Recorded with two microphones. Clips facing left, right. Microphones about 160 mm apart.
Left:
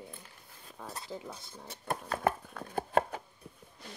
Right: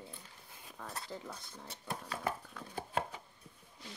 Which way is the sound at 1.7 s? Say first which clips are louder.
Left 7 dB; 55° left (ahead or behind).